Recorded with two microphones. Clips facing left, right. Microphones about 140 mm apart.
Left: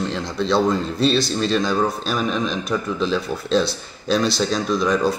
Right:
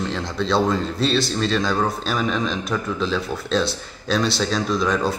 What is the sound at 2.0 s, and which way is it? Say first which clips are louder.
Speech: even; 15° left (ahead or behind).